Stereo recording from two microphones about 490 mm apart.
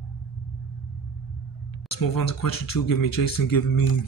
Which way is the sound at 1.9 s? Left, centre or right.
Left.